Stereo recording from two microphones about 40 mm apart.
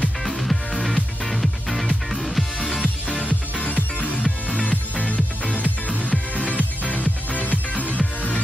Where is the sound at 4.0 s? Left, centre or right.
Left.